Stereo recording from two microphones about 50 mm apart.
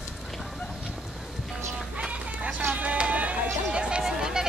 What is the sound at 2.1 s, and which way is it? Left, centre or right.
Run, right.